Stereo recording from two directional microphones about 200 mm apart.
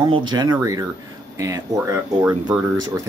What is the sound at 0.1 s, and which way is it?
Speech, 20° right (ahead or behind).